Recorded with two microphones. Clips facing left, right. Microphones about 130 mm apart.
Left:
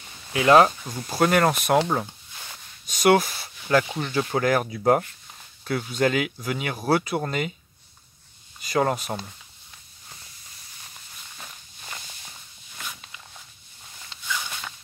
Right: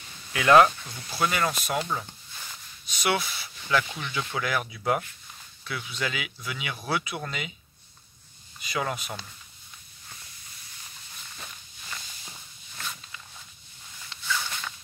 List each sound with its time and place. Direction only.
0.3 s speech: 30° left (ahead or behind)
0.8 s speech: 45° left (ahead or behind)
8.6 s speech: 45° left (ahead or behind)
14.2 s walk: 15° left (ahead or behind)